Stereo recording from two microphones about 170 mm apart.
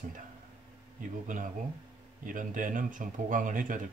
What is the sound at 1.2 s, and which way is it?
Speech, 50° right (ahead or behind).